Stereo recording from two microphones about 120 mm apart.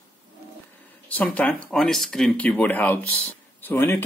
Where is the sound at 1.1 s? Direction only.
10° left (ahead or behind).